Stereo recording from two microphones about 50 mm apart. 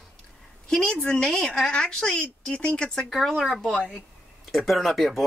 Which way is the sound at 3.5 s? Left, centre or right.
Centre.